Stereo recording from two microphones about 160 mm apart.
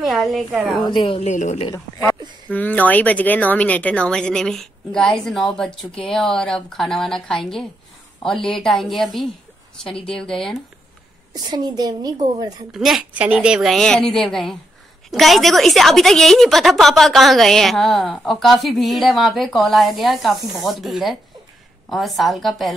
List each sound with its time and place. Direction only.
0.0 s a woman's voice: centre (ahead or behind)
0.8 s speech: 30° left (ahead or behind)
1.3 s a woman's voice: 45° left (ahead or behind)
1.7 s a woman's voice: 20° left (ahead or behind)
11.3 s a woman's voice: 25° right (ahead or behind)
12.7 s a woman's voice: 5° right (ahead or behind)